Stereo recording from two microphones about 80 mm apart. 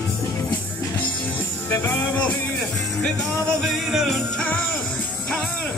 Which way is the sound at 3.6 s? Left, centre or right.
Centre.